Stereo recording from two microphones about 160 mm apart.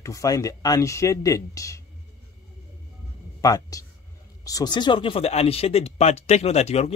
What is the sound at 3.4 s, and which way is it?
Speech, 20° left (ahead or behind).